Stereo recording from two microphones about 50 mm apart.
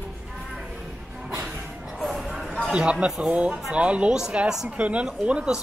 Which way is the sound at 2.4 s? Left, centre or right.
Centre.